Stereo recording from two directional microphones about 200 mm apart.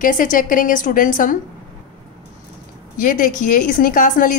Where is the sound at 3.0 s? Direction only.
45° left (ahead or behind).